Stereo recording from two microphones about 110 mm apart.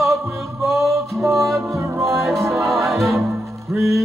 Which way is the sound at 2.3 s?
Centre (ahead or behind).